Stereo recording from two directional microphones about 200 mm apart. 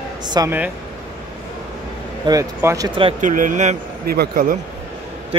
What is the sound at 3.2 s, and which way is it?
Speech, 40° right (ahead or behind).